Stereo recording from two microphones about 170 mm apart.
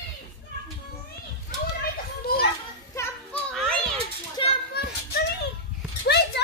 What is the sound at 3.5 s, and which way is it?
Children playing, 5° left (ahead or behind).